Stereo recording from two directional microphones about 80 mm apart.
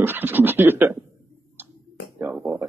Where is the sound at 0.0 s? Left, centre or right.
Right.